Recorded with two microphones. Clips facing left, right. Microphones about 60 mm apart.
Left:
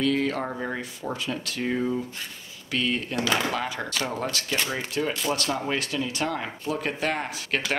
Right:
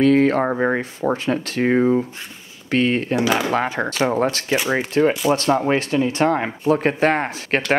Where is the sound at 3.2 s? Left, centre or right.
Centre.